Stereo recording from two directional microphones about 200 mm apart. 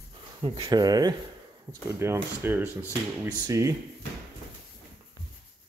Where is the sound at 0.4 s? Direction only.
20° right (ahead or behind).